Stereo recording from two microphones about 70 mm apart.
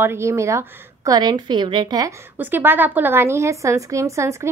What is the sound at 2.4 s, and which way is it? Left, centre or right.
A woman's voice, right.